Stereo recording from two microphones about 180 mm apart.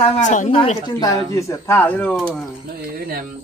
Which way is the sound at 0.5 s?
25° left (ahead or behind).